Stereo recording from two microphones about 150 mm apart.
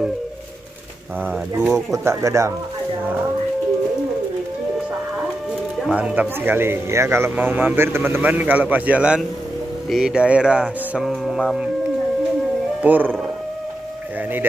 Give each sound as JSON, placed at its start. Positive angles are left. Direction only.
{"t": 1.6, "sound": "speech", "side_deg": -15}
{"t": 5.8, "sound": "speech", "side_deg": -5}
{"t": 12.8, "sound": "speech", "side_deg": -10}